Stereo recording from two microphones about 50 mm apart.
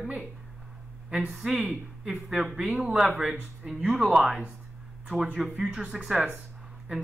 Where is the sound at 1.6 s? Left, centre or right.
Centre.